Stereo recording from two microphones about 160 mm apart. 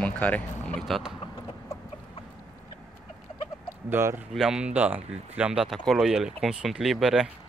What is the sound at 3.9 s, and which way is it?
Speech, 15° right (ahead or behind).